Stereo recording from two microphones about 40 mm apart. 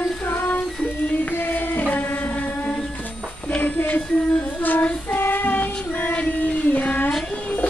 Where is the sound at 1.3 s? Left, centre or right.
Left.